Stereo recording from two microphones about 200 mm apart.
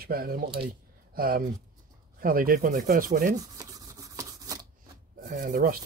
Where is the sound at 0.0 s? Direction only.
50° right (ahead or behind).